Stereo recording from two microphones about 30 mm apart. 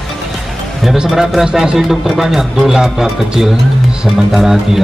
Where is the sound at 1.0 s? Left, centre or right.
Centre.